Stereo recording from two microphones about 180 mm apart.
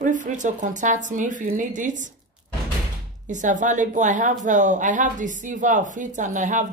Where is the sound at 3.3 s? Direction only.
45° right (ahead or behind).